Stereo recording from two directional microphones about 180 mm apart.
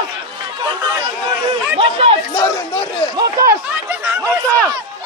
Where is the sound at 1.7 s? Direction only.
30° right (ahead or behind).